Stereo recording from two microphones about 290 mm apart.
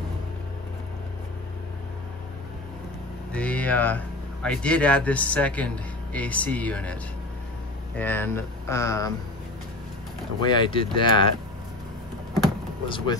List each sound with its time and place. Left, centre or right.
3.3 s speech: centre
10.4 s speech: centre
12.8 s speech: centre